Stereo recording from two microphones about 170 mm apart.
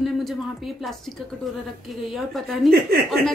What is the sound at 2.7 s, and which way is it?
Speech, 65° right (ahead or behind).